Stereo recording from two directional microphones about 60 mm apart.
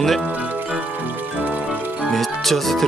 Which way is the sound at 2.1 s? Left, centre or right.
Centre.